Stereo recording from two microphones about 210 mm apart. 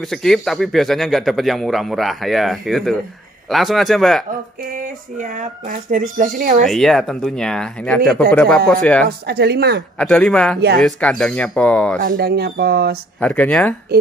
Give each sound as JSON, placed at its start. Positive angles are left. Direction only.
{"t": 0.1, "sound": "speech", "side_deg": 0}
{"t": 5.7, "sound": "speech", "side_deg": -40}
{"t": 6.6, "sound": "speech", "side_deg": 0}
{"t": 9.3, "sound": "speech", "side_deg": -50}
{"t": 9.9, "sound": "speech", "side_deg": 5}
{"t": 12.0, "sound": "speech", "side_deg": -45}
{"t": 13.2, "sound": "speech", "side_deg": 5}